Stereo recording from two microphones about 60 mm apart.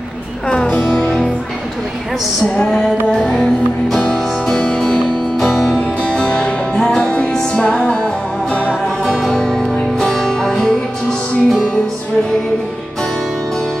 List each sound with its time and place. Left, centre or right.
0.5 s music: left
2.4 s music: centre
4.0 s music: centre
6.0 s music: centre
9.0 s music: centre